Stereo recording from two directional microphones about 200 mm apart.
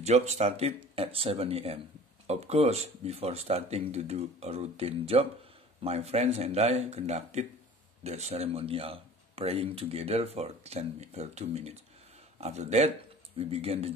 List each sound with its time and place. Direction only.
0.0 s speech: 35° right (ahead or behind)